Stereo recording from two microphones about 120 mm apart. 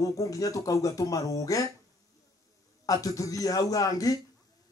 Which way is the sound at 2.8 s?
30° left (ahead or behind).